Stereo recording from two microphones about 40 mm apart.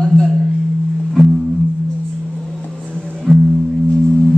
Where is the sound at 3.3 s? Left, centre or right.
Centre.